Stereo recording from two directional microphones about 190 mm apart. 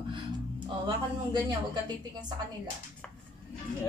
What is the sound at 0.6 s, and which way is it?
Speech, 25° right (ahead or behind).